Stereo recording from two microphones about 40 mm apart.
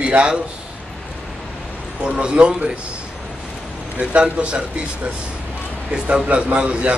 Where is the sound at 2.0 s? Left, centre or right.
Right.